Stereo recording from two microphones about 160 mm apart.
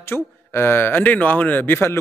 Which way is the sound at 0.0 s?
15° left (ahead or behind).